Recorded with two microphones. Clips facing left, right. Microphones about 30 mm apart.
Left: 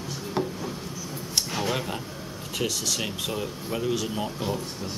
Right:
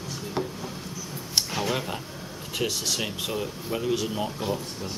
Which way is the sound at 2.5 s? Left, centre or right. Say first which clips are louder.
Even; centre.